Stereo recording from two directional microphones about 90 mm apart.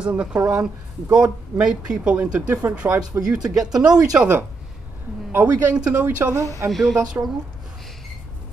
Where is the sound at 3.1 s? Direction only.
40° right (ahead or behind).